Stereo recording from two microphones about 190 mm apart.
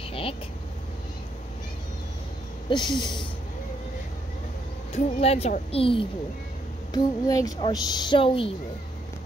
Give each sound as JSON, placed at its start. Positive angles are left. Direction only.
{"t": 0.1, "sound": "vehicle", "side_deg": 30}
{"t": 2.7, "sound": "speech", "side_deg": 25}
{"t": 4.9, "sound": "speech", "side_deg": 30}
{"t": 6.9, "sound": "speech", "side_deg": 20}